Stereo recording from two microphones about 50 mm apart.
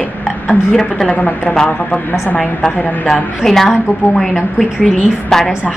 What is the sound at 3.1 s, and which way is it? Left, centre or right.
A woman's voice, centre.